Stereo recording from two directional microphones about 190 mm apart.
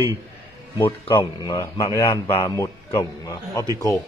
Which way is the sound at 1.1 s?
25° left (ahead or behind).